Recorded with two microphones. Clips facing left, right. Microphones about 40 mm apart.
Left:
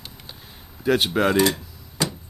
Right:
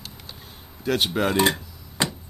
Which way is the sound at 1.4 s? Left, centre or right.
Right.